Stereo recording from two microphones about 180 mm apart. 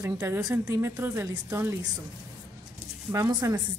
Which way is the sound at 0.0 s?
15° right (ahead or behind).